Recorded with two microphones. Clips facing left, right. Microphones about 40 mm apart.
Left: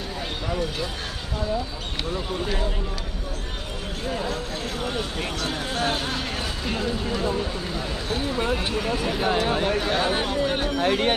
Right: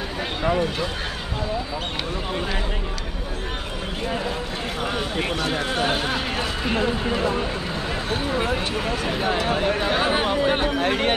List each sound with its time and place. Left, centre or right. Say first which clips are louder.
0.4 s speech: right 7 dB; right
4.8 s speech: right 5 dB; right